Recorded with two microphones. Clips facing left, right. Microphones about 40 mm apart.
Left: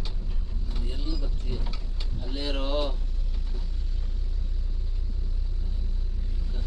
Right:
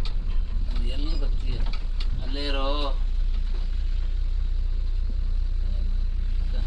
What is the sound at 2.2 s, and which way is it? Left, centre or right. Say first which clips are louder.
Vehicle: right 2 dB; right.